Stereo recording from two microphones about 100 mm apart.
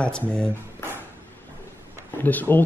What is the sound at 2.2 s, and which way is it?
Speech, 20° left (ahead or behind).